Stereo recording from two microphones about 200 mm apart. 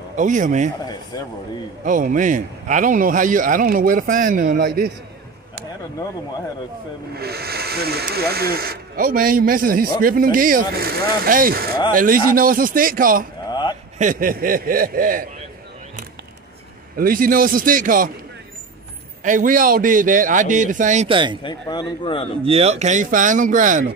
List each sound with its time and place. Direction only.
0.1 s a man's voice: 40° right (ahead or behind)
1.1 s speech: 20° left (ahead or behind)
1.9 s a man's voice: 40° right (ahead or behind)
7.2 s a man's voice: 50° right (ahead or behind)
13.5 s a sound: 20° left (ahead or behind)
13.9 s a man's voice: 40° right (ahead or behind)
16.9 s a man's voice: 45° right (ahead or behind)
19.2 s a man's voice: 40° right (ahead or behind)
21.1 s speech: 25° right (ahead or behind)
21.4 s speech: 20° left (ahead or behind)
22.4 s a man's voice: 30° right (ahead or behind)